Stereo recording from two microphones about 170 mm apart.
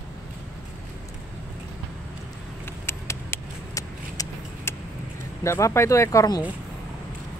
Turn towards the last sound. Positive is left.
turn(degrees=20)  # may be behind; listen again after turning